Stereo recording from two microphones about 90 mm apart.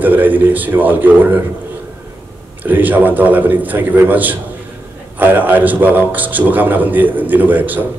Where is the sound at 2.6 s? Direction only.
20° right (ahead or behind).